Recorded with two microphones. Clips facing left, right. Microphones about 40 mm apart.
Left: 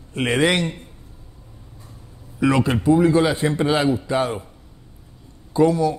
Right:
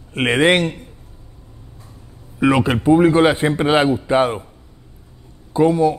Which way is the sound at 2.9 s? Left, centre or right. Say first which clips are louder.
Right 4 dB; right.